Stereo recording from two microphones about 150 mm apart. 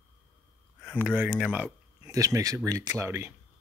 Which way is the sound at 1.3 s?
10° right (ahead or behind).